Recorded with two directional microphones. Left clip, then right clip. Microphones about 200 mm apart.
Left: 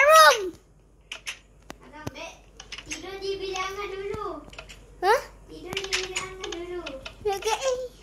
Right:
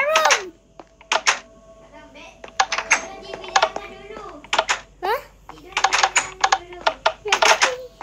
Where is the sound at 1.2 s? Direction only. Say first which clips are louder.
Right 16 dB; 10° right (ahead or behind).